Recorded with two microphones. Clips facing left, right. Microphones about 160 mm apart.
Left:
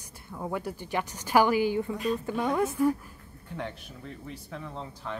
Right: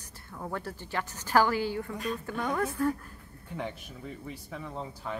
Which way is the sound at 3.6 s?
5° right (ahead or behind).